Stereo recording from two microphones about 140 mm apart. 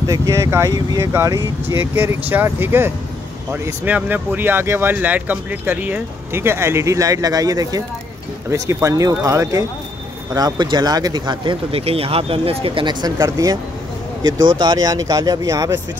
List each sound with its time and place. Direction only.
0.0 s speech: 25° right (ahead or behind)